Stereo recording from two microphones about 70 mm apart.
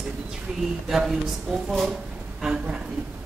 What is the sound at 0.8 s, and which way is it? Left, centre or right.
Speech, centre.